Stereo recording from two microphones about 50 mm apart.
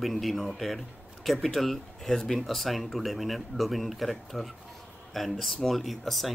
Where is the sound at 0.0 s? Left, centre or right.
Centre.